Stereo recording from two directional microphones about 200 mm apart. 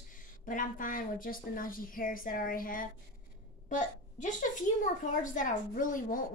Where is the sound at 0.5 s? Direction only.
40° left (ahead or behind).